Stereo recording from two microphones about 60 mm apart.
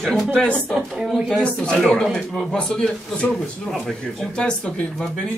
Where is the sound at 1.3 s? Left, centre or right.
Centre.